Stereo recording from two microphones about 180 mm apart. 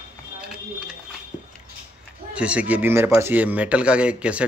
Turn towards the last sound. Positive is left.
turn(degrees=-5)  # may be behind; listen again after turning